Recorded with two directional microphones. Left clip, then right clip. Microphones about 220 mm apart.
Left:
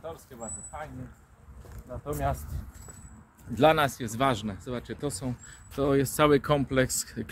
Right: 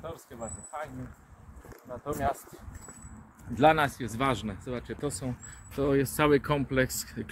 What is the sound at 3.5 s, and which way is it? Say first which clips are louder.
Speech: left 1 dB; 60° left (ahead or behind).